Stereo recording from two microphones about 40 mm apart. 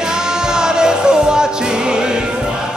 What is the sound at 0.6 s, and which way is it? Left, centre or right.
Music, centre.